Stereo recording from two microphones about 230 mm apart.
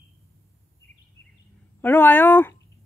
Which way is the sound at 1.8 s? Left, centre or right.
Centre.